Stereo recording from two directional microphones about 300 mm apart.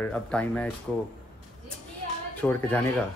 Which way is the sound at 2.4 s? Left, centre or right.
Centre.